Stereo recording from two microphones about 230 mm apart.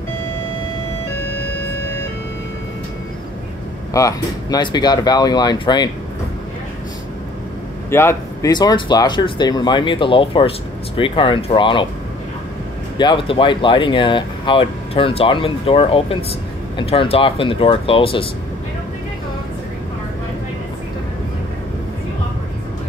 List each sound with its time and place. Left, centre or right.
3.9 s speech: centre
7.9 s speech: centre
12.9 s speech: centre